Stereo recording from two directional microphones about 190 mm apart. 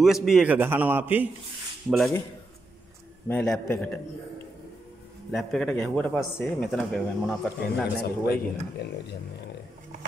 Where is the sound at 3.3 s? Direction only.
10° left (ahead or behind).